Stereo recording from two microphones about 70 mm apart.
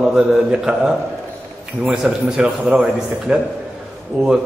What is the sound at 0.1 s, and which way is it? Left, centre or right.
A man's voice, centre.